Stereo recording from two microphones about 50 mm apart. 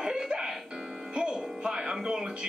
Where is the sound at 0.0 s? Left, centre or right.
Centre.